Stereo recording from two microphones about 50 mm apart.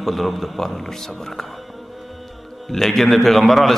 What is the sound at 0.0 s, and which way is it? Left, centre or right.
A man's voice, centre.